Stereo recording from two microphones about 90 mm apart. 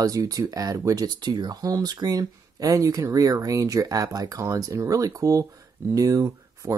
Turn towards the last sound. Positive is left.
turn(degrees=-40)  # may be behind; listen again after turning